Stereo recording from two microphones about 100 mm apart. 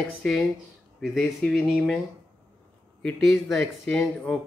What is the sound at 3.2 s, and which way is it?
Speech, centre (ahead or behind).